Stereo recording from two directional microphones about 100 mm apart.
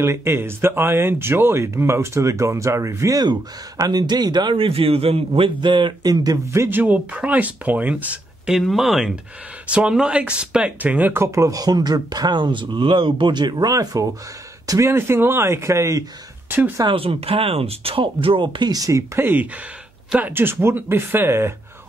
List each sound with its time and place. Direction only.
0.0 s speech: 25° right (ahead or behind)
3.2 s speech: 40° right (ahead or behind)
4.6 s speech: 70° right (ahead or behind); by 6.8 s 30° right (ahead or behind)
6.8 s speech: 15° right (ahead or behind)
11.3 s speech: 35° right (ahead or behind)
16.4 s speech: 20° right (ahead or behind)
16.8 s speech: 65° right (ahead or behind)
18.7 s speech: 35° right (ahead or behind)